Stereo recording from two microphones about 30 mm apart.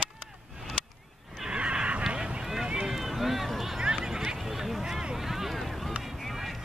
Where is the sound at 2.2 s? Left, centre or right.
Right.